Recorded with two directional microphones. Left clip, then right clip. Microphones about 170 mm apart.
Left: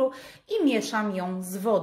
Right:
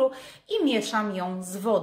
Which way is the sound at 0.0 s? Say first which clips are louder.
Right 2 dB; 15° left (ahead or behind).